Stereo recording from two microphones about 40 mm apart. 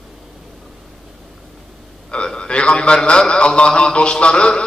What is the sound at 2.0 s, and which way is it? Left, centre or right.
A man's voice, left.